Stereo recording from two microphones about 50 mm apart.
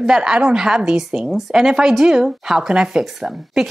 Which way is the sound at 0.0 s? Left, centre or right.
Centre.